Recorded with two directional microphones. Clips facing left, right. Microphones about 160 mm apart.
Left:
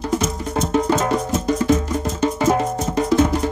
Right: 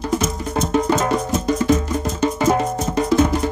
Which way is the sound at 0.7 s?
35° left (ahead or behind).